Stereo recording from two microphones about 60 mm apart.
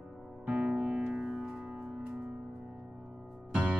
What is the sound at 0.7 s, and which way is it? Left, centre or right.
Music, centre.